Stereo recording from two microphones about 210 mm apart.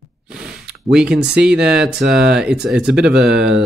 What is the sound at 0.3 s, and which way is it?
Speech, 5° right (ahead or behind).